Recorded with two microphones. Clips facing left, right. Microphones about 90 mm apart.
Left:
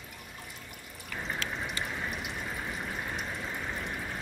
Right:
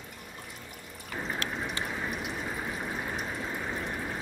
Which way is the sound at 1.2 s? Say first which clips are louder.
Right 2 dB; 5° right (ahead or behind).